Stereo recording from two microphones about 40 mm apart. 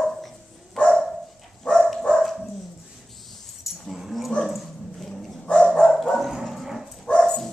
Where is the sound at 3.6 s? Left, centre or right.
Centre.